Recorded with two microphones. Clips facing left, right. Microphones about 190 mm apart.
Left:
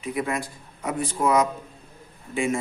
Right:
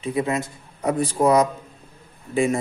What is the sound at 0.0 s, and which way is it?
Speech, 25° right (ahead or behind).